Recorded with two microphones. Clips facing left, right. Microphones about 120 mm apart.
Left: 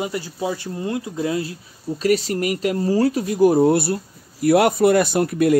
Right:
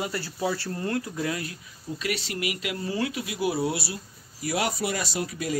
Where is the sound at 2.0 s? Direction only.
40° left (ahead or behind).